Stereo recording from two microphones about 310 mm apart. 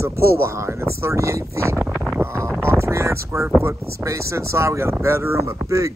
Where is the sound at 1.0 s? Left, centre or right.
Centre.